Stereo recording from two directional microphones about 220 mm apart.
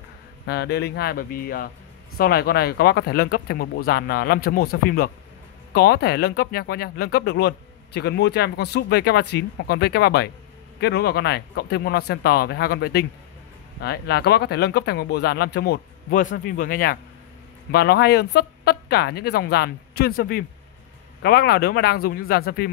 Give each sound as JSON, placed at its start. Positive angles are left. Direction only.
{"t": 0.5, "sound": "speech", "side_deg": 50}